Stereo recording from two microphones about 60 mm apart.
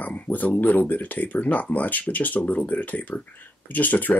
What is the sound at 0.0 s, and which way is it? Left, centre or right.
Speech, left.